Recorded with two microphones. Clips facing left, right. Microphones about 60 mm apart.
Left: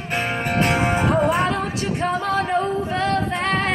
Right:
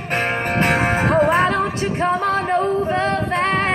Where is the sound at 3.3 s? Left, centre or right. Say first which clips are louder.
Right 3 dB; right.